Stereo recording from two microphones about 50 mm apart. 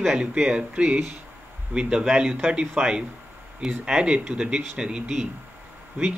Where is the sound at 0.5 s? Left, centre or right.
Right.